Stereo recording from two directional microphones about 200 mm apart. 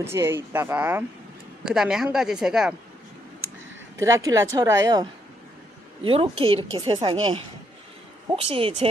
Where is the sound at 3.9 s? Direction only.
15° right (ahead or behind).